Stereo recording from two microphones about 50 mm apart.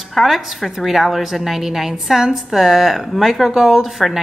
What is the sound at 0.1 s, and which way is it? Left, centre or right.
A woman's voice, centre.